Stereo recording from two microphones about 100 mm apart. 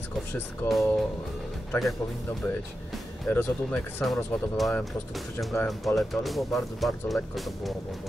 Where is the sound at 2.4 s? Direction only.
20° left (ahead or behind).